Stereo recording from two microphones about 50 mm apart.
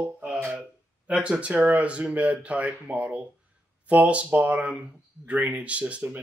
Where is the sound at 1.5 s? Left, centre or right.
Right.